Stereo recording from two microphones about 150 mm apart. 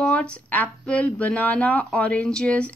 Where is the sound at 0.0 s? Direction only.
5° left (ahead or behind).